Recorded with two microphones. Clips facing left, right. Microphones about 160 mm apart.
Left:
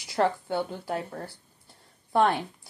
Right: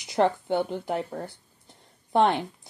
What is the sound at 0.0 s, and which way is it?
A woman's voice, 20° right (ahead or behind).